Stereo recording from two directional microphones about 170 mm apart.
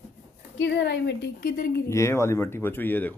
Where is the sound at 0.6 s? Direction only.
85° left; by 1.8 s 60° left (ahead or behind).